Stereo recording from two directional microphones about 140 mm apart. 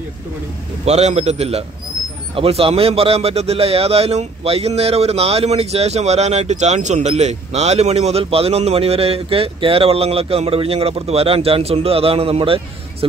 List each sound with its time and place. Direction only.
0.8 s speech: 50° right (ahead or behind)